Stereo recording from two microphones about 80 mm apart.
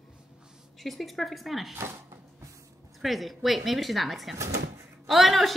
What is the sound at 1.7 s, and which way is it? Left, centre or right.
Speech, right.